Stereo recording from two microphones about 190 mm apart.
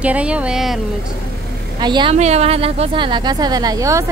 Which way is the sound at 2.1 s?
35° right (ahead or behind).